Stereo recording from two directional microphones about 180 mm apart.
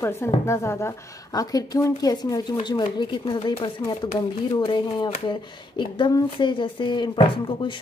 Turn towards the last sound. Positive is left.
turn(degrees=25)  # may be behind; listen again after turning